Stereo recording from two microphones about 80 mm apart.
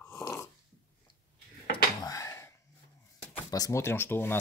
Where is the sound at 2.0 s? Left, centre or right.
Left.